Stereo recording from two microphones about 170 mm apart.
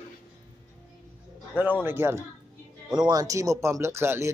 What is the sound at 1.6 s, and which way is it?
Speech, 10° right (ahead or behind).